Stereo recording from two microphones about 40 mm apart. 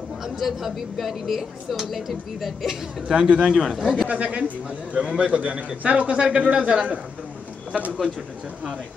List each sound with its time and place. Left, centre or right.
0.2 s speech: centre
3.3 s a man's voice: right
3.6 s speech: centre
4.1 s a man's voice: right